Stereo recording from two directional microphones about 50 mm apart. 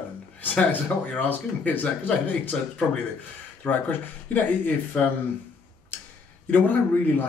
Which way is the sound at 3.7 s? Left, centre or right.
Left.